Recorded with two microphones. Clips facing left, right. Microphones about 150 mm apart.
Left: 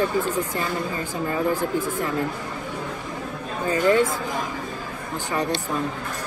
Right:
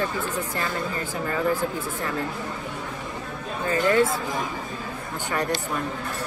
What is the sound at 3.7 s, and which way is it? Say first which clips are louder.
Speech: left 1 dB; 20° left (ahead or behind).